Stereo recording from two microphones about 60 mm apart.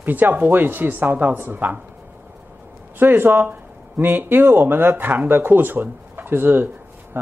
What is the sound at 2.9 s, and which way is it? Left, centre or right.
Speech, right.